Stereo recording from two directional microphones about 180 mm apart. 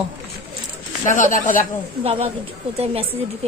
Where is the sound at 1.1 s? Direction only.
45° left (ahead or behind).